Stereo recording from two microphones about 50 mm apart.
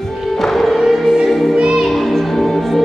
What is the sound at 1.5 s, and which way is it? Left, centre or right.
Music, right.